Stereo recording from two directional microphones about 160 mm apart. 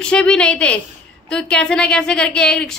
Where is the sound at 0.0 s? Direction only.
5° left (ahead or behind).